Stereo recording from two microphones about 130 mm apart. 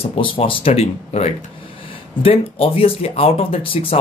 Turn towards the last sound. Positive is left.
turn(degrees=45)  # may be behind; listen again after turning